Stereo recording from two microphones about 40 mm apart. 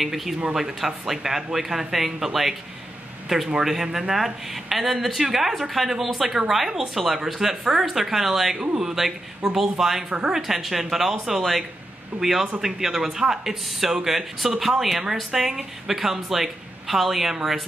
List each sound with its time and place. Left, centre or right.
0.0 s speech: centre
3.5 s speech: centre
8.5 s speech: centre
10.0 s speech: right
10.3 s speech: centre